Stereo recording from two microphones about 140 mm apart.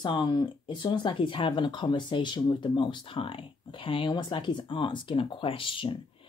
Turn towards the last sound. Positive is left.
turn(degrees=40)  # may be behind; listen again after turning